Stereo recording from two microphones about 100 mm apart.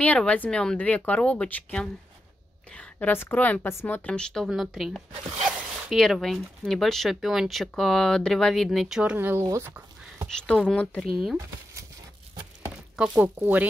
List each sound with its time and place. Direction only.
0.0 s a woman's voice: 15° left (ahead or behind); by 9.1 s 5° right (ahead or behind)
9.1 s speech: 20° right (ahead or behind)
9.4 s speech: 30° right (ahead or behind)
10.3 s a woman's voice: 10° left (ahead or behind)
12.9 s speech: 10° right (ahead or behind)